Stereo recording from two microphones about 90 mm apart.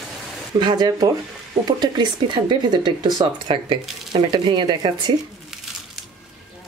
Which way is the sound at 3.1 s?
65° right (ahead or behind).